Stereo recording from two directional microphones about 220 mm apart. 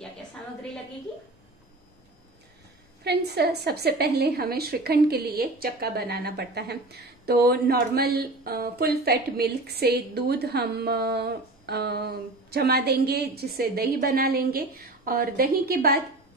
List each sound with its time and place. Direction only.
3.0 s a woman's voice: 45° right (ahead or behind)